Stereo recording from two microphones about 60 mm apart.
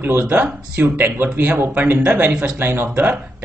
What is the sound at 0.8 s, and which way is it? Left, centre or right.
Speech, right.